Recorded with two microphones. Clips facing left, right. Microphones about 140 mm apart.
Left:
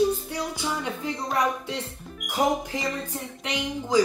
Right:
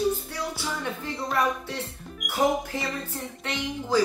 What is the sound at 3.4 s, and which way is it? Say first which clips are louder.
Speech: left 2 dB; 15° left (ahead or behind).